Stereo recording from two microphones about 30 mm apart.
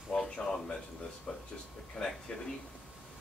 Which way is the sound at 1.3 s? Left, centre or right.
Left.